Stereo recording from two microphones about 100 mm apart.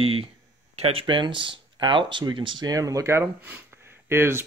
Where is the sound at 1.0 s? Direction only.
55° right (ahead or behind).